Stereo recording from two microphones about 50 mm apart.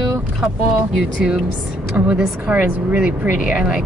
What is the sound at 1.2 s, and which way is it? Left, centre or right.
Speech, centre.